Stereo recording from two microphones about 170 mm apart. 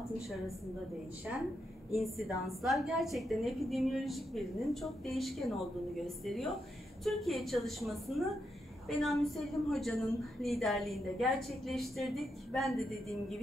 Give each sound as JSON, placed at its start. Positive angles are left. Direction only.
{"t": 1.9, "sound": "a woman's voice", "side_deg": 0}